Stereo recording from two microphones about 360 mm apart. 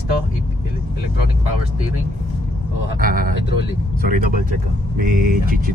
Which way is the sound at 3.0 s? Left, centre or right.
Right.